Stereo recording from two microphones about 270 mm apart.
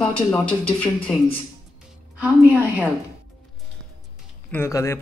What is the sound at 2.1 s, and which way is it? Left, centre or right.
Speech, centre.